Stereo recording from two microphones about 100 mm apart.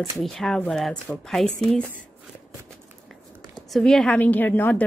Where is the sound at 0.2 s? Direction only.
Centre (ahead or behind).